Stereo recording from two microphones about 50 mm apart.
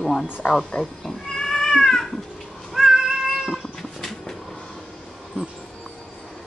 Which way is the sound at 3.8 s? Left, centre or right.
Centre.